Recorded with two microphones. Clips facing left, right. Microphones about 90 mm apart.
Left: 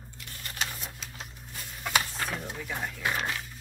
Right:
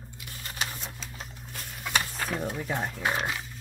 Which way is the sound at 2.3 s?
40° right (ahead or behind).